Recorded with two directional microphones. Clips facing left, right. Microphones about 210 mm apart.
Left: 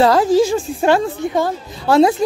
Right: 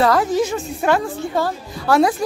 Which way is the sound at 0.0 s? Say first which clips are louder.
Left 4 dB; 30° left (ahead or behind).